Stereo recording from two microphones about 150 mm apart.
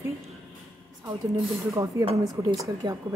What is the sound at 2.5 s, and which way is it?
Speech, 25° right (ahead or behind).